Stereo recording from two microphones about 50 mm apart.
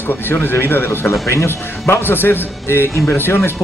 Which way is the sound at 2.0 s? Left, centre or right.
Left.